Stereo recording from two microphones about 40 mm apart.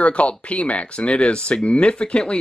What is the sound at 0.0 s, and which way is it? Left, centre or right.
Speech, left.